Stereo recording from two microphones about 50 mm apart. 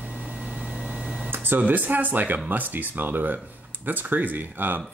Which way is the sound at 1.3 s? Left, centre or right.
Right.